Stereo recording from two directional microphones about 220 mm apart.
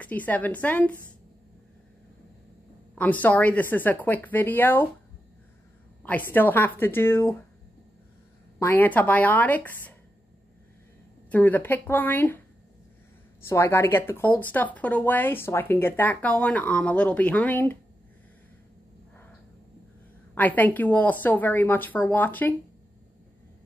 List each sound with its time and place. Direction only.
0.0 s speech: 5° left (ahead or behind)
3.0 s speech: 5° left (ahead or behind)
6.0 s speech: 10° left (ahead or behind)
8.5 s speech: 10° left (ahead or behind)
11.2 s speech: 5° left (ahead or behind)
13.5 s speech: 10° left (ahead or behind)
20.3 s speech: 5° left (ahead or behind)